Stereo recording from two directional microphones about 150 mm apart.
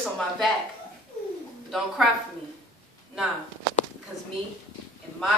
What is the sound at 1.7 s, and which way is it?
Speech, centre (ahead or behind).